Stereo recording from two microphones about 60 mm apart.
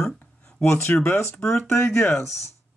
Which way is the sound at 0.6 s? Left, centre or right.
Left.